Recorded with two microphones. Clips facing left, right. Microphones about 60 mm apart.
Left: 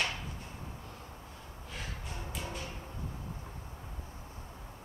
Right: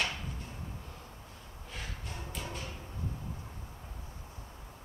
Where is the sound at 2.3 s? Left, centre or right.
Centre.